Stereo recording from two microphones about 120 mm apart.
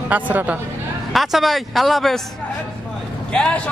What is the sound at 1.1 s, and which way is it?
Speech, centre (ahead or behind).